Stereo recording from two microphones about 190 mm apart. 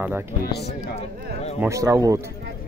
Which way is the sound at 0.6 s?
35° left (ahead or behind).